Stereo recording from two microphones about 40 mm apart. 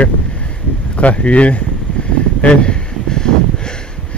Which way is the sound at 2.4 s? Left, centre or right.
Left.